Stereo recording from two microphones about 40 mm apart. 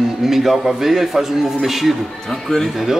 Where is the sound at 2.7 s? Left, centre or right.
Centre.